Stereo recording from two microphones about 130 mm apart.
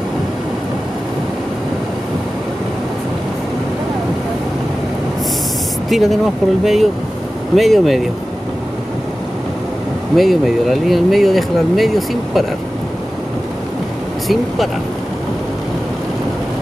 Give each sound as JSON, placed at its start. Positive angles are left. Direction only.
{"t": 5.9, "sound": "speech", "side_deg": 0}
{"t": 10.1, "sound": "speech", "side_deg": 0}
{"t": 14.2, "sound": "speech", "side_deg": 0}